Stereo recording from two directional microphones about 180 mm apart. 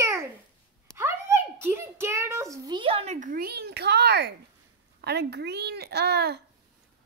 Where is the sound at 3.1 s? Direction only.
50° right (ahead or behind).